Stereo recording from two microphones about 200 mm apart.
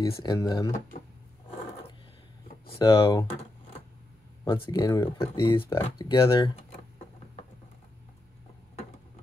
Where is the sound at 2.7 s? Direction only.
15° left (ahead or behind).